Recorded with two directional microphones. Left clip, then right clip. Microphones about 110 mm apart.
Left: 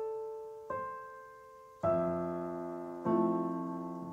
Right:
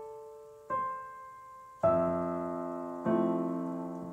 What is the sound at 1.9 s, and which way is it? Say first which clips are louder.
Music: right 3 dB; 15° left (ahead or behind).